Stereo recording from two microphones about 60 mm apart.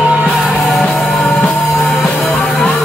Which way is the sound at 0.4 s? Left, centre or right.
Centre.